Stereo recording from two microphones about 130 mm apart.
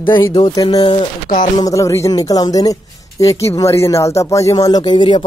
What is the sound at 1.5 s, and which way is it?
Speech, 25° left (ahead or behind).